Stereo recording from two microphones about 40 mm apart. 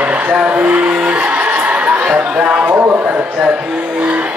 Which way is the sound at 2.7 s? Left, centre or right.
Right.